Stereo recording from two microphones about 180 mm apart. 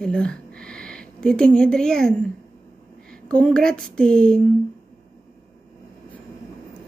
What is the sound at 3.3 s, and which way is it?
A woman's voice, 5° left (ahead or behind).